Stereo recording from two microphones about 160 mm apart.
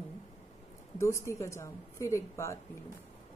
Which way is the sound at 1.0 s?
20° left (ahead or behind).